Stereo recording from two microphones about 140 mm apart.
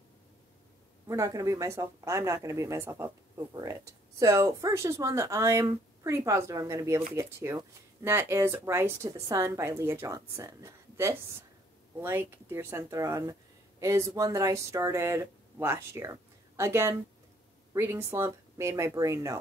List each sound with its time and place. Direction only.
1.0 s speech: 25° right (ahead or behind)